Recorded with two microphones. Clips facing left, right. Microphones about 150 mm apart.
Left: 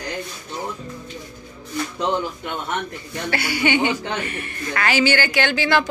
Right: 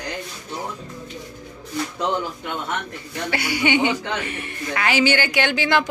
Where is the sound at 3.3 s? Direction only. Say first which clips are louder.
Even; 15° right (ahead or behind).